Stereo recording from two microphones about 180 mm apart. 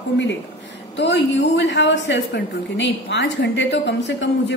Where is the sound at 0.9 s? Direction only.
75° left (ahead or behind).